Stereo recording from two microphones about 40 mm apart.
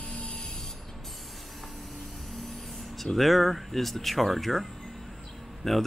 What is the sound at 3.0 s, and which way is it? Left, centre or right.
Speech, centre.